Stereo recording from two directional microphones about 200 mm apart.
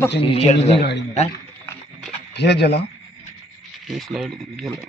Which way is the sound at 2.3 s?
55° left (ahead or behind).